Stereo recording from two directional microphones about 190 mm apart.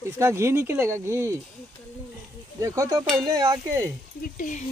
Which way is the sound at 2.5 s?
15° right (ahead or behind).